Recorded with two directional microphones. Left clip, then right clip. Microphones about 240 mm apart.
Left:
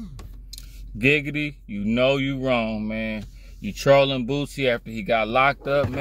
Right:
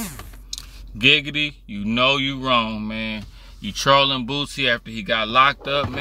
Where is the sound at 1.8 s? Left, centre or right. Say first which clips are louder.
Right 2 dB; right.